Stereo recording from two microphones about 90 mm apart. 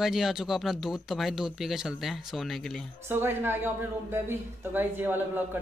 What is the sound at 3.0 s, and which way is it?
A man's voice, 25° right (ahead or behind).